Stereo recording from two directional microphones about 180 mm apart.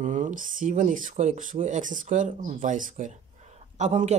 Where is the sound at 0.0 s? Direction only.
45° right (ahead or behind).